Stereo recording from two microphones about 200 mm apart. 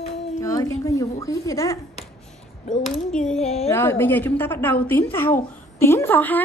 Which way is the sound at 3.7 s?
10° left (ahead or behind).